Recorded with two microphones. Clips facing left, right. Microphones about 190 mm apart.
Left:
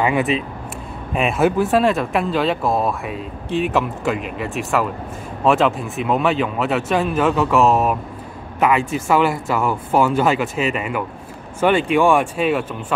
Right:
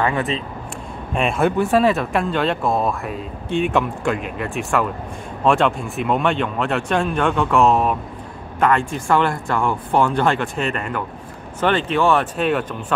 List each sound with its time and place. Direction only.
0.0 s speech: 10° left (ahead or behind)